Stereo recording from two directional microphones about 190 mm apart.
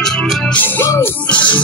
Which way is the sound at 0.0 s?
5° left (ahead or behind).